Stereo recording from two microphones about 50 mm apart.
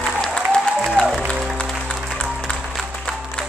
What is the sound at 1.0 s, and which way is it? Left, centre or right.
Music, left.